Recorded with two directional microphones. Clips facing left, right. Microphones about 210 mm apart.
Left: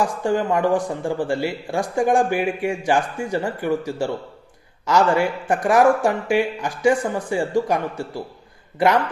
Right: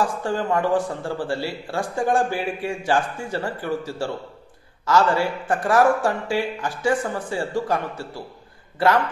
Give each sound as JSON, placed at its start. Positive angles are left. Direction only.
{"t": 0.0, "sound": "a man's voice", "side_deg": 15}